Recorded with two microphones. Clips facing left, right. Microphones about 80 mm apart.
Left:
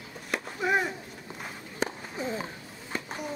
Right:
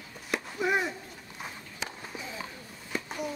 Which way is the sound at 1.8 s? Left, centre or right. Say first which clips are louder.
Left 8 dB; left.